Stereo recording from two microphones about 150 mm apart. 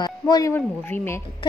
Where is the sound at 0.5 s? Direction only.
15° left (ahead or behind).